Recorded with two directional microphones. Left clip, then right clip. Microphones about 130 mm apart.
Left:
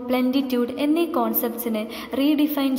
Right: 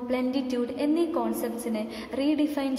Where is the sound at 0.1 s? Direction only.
20° left (ahead or behind).